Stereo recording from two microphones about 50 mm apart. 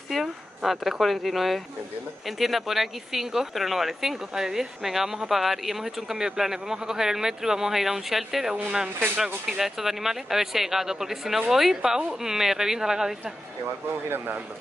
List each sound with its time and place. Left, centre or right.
0.1 s a woman's voice: centre
8.6 s speech: right
9.2 s speech: centre